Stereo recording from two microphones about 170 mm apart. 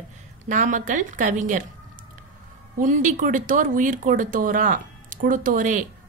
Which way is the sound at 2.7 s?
45° right (ahead or behind).